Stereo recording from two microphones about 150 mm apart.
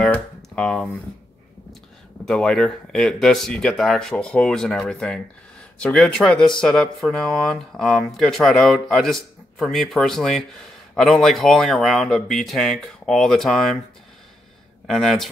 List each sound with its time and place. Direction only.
0.6 s speech: 5° left (ahead or behind)
2.2 s speech: 5° left (ahead or behind)
14.9 s speech: centre (ahead or behind)